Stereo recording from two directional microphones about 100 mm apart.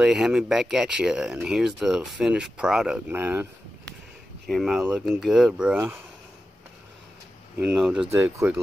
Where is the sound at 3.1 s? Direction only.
25° right (ahead or behind).